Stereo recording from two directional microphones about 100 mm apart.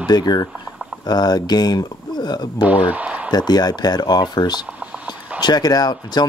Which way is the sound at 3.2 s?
40° left (ahead or behind).